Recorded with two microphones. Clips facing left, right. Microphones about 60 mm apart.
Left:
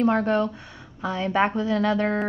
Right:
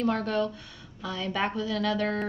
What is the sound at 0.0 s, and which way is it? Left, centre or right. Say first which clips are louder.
Speech: left 6 dB; left.